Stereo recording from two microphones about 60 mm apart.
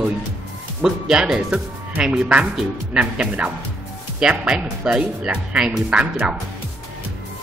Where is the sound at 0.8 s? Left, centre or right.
Centre.